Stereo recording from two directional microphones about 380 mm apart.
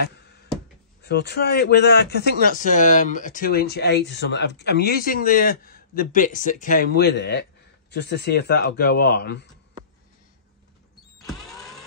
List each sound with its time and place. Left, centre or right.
1.0 s speech: left